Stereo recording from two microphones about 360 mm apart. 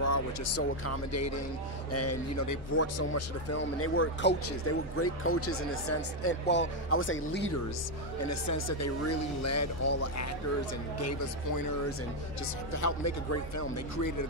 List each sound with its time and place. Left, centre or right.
0.0 s speech: left
8.3 s speech: left
12.8 s speech: left